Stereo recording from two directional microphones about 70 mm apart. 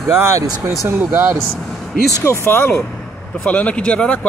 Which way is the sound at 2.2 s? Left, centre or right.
Left.